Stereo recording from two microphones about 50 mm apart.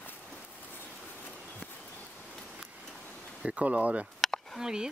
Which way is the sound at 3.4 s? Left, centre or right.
Right.